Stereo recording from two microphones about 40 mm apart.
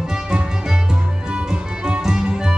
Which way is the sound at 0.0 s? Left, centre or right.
Centre.